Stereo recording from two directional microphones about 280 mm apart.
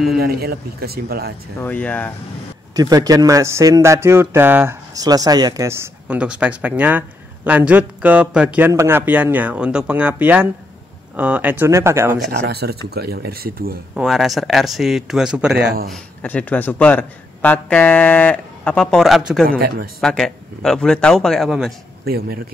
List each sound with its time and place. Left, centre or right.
0.2 s speech: right
1.6 s a man's voice: centre
2.7 s speech: centre
12.3 s speech: right
13.9 s a man's voice: centre
22.0 s speech: right